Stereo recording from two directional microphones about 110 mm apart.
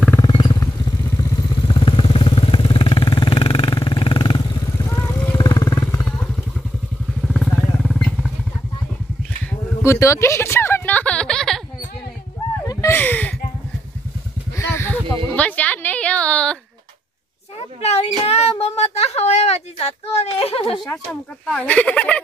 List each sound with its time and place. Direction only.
0.3 s motorcycle: 40° left (ahead or behind)
1.1 s vehicle: 45° left (ahead or behind)
4.8 s vehicle: 30° left (ahead or behind)
7.3 s vehicle: 5° left (ahead or behind)
9.5 s a sound: 25° left (ahead or behind); by 11.6 s 5° left (ahead or behind)
12.9 s speech: 15° left (ahead or behind)
14.6 s a sound: 20° left (ahead or behind)
15.3 s a woman's voice: 15° left (ahead or behind)
18.2 s speech: 70° left (ahead or behind)
20.9 s speech: 10° left (ahead or behind)